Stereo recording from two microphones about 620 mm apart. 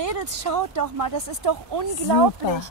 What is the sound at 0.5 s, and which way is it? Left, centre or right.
Speech, right.